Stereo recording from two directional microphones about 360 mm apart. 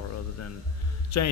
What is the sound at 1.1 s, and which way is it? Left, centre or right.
Speech, left.